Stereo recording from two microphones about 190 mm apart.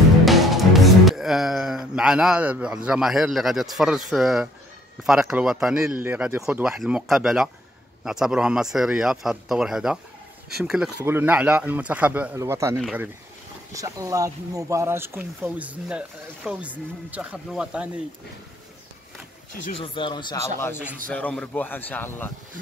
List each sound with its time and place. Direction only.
0.2 s music: centre (ahead or behind)
5.0 s speech: 5° right (ahead or behind)
13.7 s speech: 15° right (ahead or behind)
19.8 s speech: 25° left (ahead or behind)
21.1 s speech: 5° left (ahead or behind)